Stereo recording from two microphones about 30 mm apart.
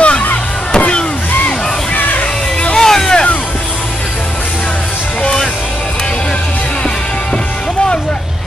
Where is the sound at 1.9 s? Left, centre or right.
Left.